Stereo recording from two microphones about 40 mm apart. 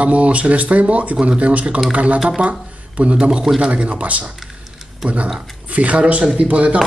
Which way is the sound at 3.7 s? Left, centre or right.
Right.